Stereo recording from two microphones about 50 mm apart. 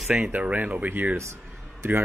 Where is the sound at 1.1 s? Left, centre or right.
Right.